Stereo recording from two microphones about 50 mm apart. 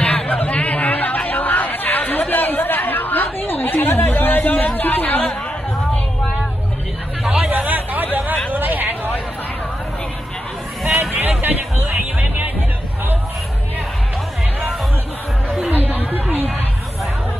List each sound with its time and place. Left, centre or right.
0.0 s chatter: left
7.5 s a sound: right
11.1 s music: right
15.6 s chatter: right